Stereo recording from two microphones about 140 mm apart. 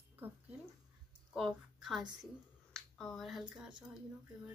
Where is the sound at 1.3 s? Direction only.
5° right (ahead or behind).